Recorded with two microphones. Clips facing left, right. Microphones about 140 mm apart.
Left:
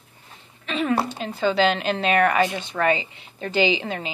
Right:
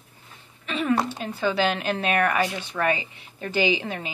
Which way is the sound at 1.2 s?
20° left (ahead or behind).